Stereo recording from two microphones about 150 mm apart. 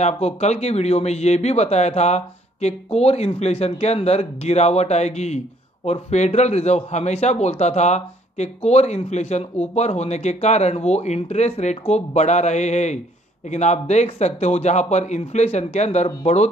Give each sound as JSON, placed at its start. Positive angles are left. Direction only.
{"t": 0.0, "sound": "a man's voice", "side_deg": 50}